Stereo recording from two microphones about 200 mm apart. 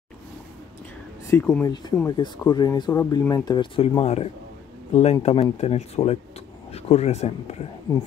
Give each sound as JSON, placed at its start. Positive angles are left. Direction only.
{"t": 1.3, "sound": "speech", "side_deg": 10}
{"t": 2.0, "sound": "speech", "side_deg": 20}